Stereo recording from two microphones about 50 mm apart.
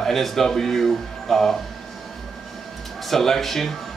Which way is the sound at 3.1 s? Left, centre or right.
Centre.